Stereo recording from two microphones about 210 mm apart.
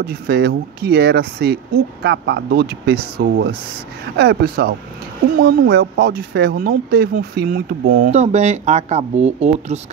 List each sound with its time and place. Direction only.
0.0 s speech: 50° right (ahead or behind); by 9.8 s 30° right (ahead or behind)